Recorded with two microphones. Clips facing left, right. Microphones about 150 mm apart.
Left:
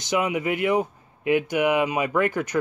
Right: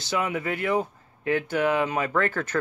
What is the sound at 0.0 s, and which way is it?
Speech, 20° left (ahead or behind).